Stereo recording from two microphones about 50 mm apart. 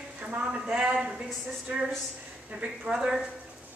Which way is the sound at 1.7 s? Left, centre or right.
Right.